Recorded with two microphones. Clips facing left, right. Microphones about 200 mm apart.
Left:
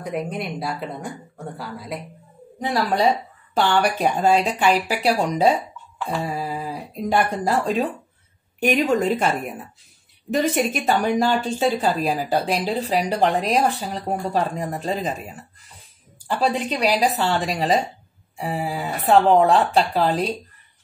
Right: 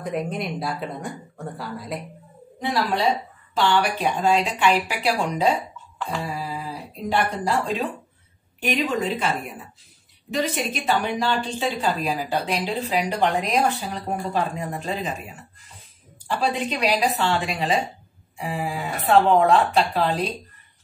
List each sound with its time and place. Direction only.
0.0 s speech: centre (ahead or behind)
2.6 s a woman's voice: 45° left (ahead or behind)
10.3 s a woman's voice: 50° left (ahead or behind)
16.4 s a woman's voice: 35° left (ahead or behind)